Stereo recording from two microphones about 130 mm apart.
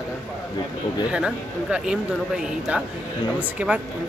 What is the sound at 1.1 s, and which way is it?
Speech, 10° right (ahead or behind).